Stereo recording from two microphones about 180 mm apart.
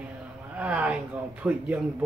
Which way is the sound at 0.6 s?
10° right (ahead or behind).